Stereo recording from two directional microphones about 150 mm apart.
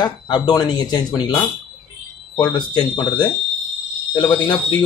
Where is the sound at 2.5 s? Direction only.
30° left (ahead or behind).